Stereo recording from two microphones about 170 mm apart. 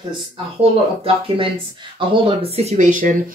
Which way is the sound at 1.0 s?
30° right (ahead or behind).